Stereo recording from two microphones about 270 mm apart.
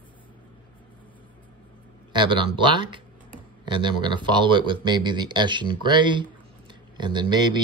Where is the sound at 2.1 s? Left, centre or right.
Centre.